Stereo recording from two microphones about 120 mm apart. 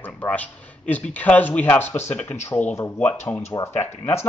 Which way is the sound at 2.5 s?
20° left (ahead or behind).